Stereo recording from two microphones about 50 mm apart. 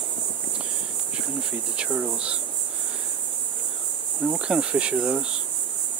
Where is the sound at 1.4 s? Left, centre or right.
Centre.